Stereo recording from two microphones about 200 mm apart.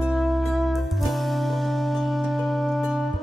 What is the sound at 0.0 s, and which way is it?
Music, centre (ahead or behind).